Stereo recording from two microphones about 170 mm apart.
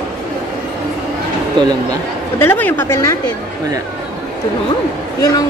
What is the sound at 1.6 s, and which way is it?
Speech, 25° right (ahead or behind).